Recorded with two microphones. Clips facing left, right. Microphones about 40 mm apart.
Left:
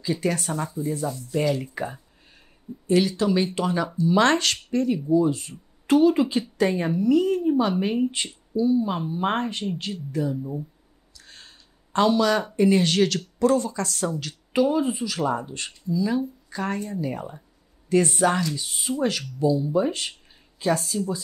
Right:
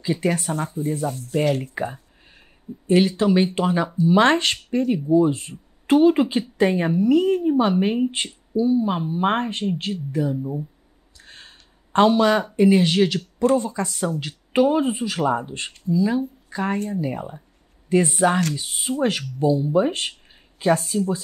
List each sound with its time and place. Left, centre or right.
0.0 s a woman's voice: right
0.5 s speech: right
1.6 s a woman's voice: right
10.3 s speech: centre
11.1 s a sound: right
12.6 s speech: centre
14.2 s speech: right
18.0 s speech: centre
18.5 s speech: right